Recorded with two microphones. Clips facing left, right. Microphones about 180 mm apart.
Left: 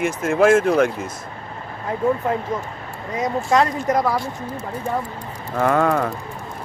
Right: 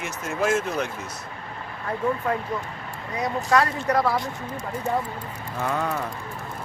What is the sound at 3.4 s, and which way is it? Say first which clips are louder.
Speech: left 3 dB; 20° left (ahead or behind).